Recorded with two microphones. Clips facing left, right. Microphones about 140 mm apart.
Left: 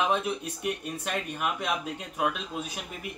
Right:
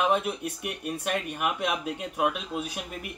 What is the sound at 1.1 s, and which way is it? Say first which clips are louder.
Speech: right 2 dB; 10° right (ahead or behind).